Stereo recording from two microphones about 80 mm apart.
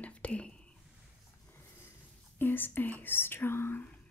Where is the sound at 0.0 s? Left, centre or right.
Centre.